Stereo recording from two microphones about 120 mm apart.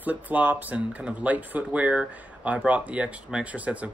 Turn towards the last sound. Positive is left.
turn(degrees=-10)  # may be behind; listen again after turning